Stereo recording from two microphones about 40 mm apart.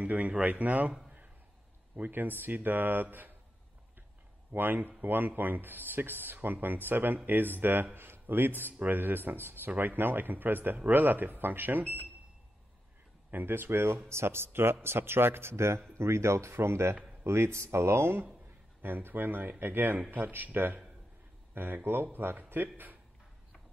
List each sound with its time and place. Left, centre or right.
0.0 s speech: right
2.0 s speech: right
4.5 s speech: right
13.3 s speech: right
13.6 s speech: right
14.2 s speech: right
18.8 s speech: right